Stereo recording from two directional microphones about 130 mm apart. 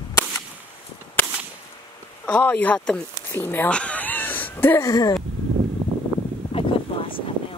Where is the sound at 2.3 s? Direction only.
10° left (ahead or behind).